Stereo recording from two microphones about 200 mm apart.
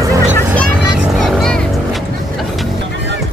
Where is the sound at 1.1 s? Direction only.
Centre (ahead or behind).